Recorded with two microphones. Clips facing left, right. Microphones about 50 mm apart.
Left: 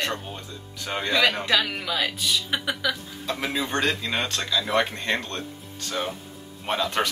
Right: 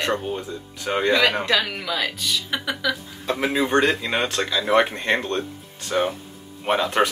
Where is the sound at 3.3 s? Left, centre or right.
Centre.